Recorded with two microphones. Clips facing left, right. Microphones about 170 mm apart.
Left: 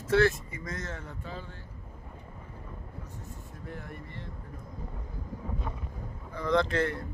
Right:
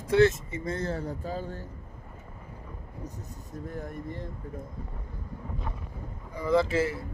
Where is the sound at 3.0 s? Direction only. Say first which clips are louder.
Right 3 dB; 40° right (ahead or behind).